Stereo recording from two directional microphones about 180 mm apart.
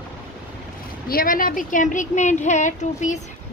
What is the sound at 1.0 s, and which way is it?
Speech, 50° left (ahead or behind).